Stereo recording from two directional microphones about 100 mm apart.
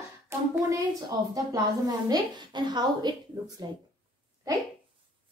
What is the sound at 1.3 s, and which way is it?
A woman's voice, 40° right (ahead or behind).